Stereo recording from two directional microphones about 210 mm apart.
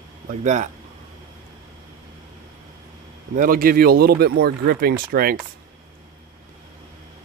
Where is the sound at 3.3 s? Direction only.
40° right (ahead or behind).